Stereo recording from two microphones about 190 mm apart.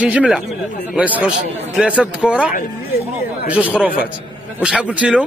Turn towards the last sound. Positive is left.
turn(degrees=-5)  # may be behind; listen again after turning